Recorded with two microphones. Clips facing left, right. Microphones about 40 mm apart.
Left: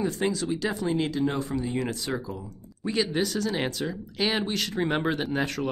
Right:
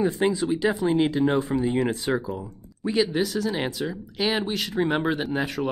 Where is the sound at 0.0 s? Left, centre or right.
Right.